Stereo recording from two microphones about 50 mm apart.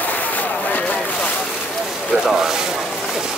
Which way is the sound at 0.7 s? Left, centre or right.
Left.